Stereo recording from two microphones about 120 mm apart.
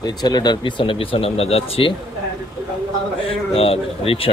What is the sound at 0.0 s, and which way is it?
Speech, 35° left (ahead or behind).